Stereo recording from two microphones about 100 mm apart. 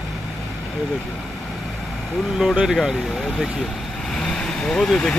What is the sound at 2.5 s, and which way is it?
Speech, 5° right (ahead or behind).